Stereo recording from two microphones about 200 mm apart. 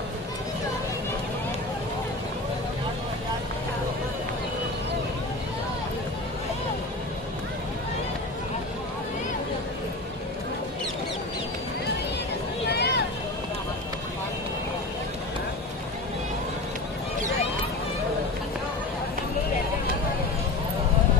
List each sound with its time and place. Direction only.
12.6 s vehicle: 55° left (ahead or behind)